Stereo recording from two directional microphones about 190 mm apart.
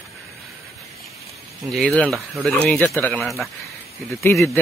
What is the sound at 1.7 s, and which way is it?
Speech, 5° left (ahead or behind).